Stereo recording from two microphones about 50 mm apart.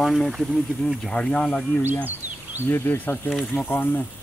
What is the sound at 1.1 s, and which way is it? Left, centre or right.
Speech, left.